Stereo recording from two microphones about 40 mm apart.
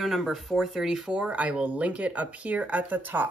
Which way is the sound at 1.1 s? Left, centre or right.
Right.